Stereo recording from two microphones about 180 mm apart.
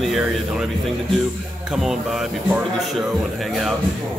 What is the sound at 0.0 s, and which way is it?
Speech, centre (ahead or behind).